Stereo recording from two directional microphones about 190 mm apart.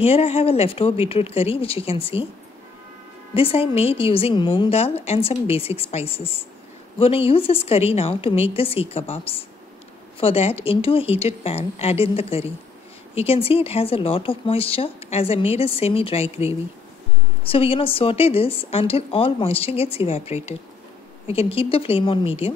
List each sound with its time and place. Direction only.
0.0 s speech: 30° left (ahead or behind)
3.3 s speech: 30° left (ahead or behind)
17.5 s speech: 30° left (ahead or behind)